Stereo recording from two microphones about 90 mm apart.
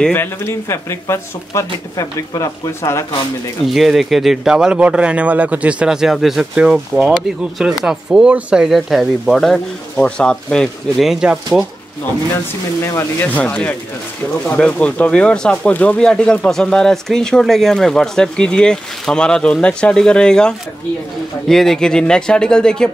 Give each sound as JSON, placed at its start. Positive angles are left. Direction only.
{"t": 0.1, "sound": "speech", "side_deg": 25}
{"t": 3.6, "sound": "speech", "side_deg": 0}
{"t": 11.1, "sound": "speech", "side_deg": -10}
{"t": 12.8, "sound": "speech", "side_deg": 25}